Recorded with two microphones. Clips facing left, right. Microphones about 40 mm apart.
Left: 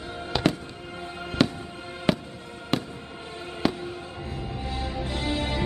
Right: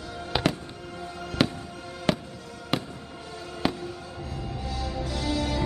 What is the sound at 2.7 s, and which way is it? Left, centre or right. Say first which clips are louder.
Fireworks: left 1 dB; centre.